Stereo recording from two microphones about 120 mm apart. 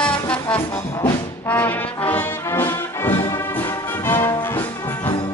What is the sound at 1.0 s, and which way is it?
Brass instrument, 15° left (ahead or behind).